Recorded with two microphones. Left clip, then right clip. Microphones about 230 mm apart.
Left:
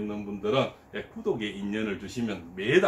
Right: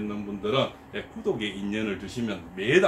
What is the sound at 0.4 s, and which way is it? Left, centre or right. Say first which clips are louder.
A man's voice: right 1 dB; centre.